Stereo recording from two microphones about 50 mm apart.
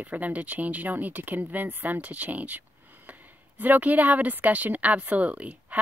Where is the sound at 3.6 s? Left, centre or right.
Right.